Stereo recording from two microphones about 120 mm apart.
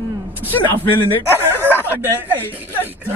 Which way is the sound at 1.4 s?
20° right (ahead or behind).